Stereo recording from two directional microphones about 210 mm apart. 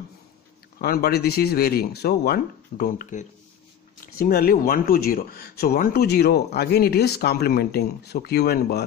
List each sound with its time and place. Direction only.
0.7 s speech: 45° left (ahead or behind)